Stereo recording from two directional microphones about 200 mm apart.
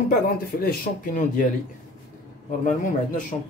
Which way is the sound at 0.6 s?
45° left (ahead or behind).